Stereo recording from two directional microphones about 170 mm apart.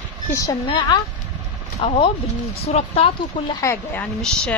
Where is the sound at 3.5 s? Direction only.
15° left (ahead or behind).